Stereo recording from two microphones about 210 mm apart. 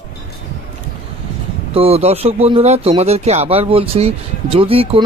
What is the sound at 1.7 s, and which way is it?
Speech, 30° right (ahead or behind).